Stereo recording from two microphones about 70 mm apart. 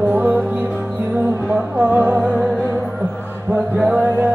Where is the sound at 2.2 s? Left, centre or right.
Centre.